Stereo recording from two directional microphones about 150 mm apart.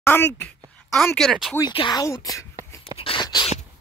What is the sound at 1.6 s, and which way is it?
Speech, 30° left (ahead or behind).